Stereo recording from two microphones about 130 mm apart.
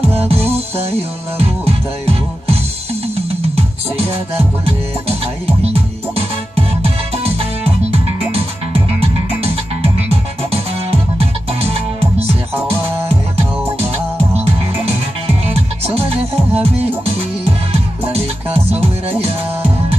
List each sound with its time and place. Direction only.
0.1 s music: 50° right (ahead or behind)
6.5 s music: 50° right (ahead or behind)
10.5 s music: 50° right (ahead or behind)
15.2 s music: 50° right (ahead or behind)
18.1 s music: 50° right (ahead or behind)